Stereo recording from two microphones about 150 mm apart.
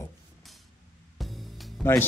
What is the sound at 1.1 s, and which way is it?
Music, centre (ahead or behind).